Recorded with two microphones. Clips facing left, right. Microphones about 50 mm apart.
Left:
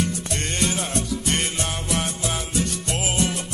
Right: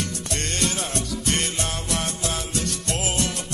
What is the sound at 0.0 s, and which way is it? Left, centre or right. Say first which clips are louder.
Music: left 3 dB; centre.